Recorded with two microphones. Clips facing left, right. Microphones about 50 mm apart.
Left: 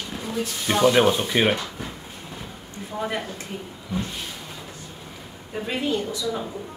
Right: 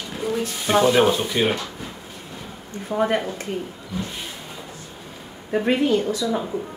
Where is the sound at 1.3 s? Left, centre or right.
Centre.